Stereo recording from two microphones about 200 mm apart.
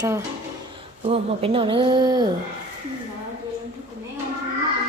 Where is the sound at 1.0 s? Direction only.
30° right (ahead or behind).